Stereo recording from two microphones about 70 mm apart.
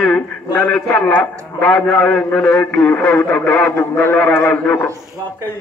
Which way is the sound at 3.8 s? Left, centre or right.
Left.